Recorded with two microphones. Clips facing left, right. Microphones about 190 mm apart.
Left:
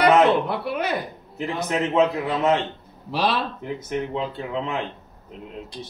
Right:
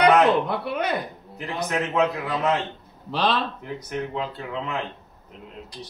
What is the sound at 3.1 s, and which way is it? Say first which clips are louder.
Speech: even; 10° left (ahead or behind).